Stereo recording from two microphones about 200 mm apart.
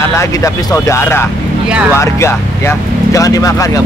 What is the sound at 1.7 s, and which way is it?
Speech, 5° right (ahead or behind).